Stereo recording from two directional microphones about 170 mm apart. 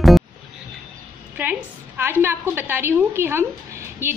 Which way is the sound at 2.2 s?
10° right (ahead or behind).